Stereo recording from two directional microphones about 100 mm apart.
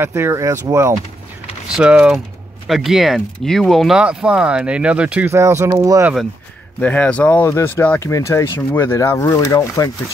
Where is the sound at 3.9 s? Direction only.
10° right (ahead or behind).